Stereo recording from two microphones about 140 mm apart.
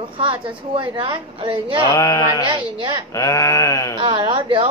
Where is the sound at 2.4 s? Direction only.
35° right (ahead or behind).